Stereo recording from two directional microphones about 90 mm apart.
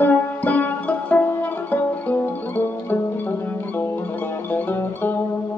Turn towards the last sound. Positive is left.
turn(degrees=25)  # may be behind; listen again after turning